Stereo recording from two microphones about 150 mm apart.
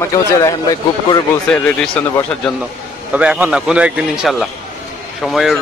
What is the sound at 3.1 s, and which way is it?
A man's voice, 10° right (ahead or behind).